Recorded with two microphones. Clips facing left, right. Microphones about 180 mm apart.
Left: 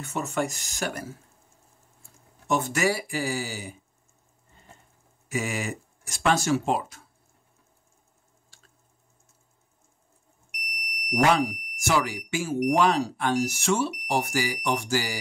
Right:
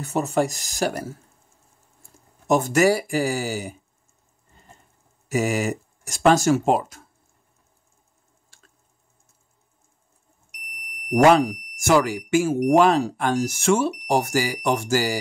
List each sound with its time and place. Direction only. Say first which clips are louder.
0.0 s speech: right 6 dB; 35° right (ahead or behind)
2.4 s speech: right 7 dB; 40° right (ahead or behind)
5.3 s speech: right 7 dB; 40° right (ahead or behind)
11.2 s speech: right 7 dB; 50° right (ahead or behind)